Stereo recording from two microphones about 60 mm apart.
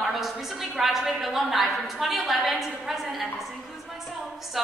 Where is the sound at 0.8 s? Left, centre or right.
Centre.